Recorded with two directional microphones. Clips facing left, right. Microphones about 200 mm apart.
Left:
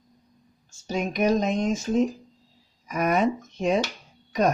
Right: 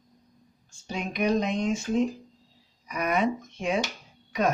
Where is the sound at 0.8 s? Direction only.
40° left (ahead or behind).